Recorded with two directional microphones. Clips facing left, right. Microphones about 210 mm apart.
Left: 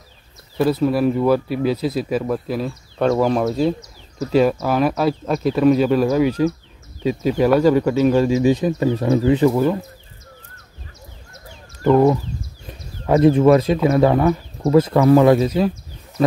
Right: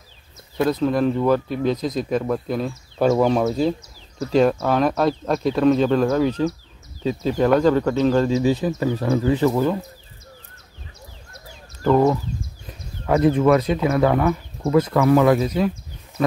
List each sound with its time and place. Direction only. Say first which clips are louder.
0.6 s speech: left 2 dB; 5° left (ahead or behind)
9.5 s speech: left 2 dB; 10° left (ahead or behind)
11.8 s speech: left 3 dB; 15° left (ahead or behind); by 16.3 s 35° left (ahead or behind)